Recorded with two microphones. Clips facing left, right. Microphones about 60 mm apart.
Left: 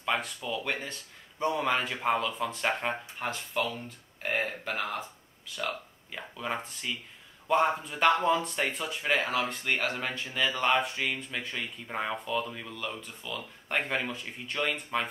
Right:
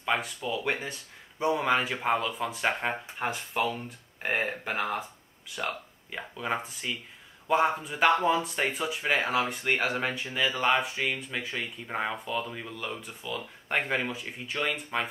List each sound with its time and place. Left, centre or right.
0.0 s speech: centre
6.1 s speech: centre